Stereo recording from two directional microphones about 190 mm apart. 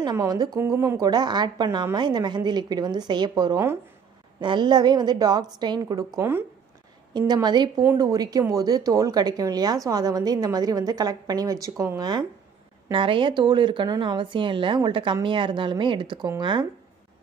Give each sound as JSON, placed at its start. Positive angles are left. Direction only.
{"t": 0.0, "sound": "speech", "side_deg": -20}